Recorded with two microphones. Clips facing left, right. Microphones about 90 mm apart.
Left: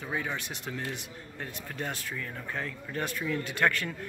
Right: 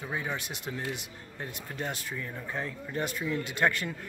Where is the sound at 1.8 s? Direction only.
10° right (ahead or behind).